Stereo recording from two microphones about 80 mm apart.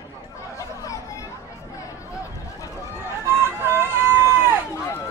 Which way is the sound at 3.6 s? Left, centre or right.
Right.